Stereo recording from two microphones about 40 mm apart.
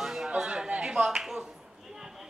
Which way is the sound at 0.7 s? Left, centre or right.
Right.